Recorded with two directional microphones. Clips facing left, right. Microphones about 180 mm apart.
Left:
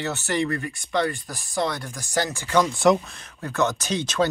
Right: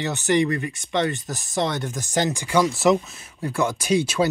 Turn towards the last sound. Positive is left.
turn(degrees=-10)  # may be behind; listen again after turning